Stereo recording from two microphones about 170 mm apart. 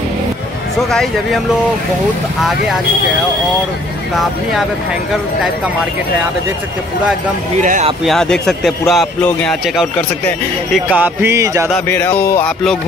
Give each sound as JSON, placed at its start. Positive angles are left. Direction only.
{"t": 0.8, "sound": "speech", "side_deg": 5}
{"t": 4.2, "sound": "speech", "side_deg": 0}
{"t": 7.6, "sound": "speech", "side_deg": -50}
{"t": 8.0, "sound": "speech", "side_deg": 0}
{"t": 10.7, "sound": "a sound", "side_deg": -5}
{"t": 11.9, "sound": "a sound", "side_deg": 10}